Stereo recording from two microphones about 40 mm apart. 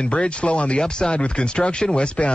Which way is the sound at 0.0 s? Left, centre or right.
Left.